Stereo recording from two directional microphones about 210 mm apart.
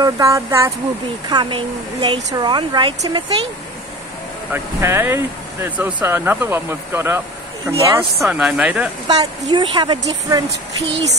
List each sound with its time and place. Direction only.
0.0 s speech: 15° right (ahead or behind)
4.5 s speech: 10° right (ahead or behind)
9.0 s speech: 20° right (ahead or behind)